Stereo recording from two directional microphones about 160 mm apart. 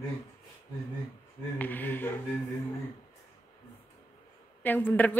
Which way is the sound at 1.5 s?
10° left (ahead or behind).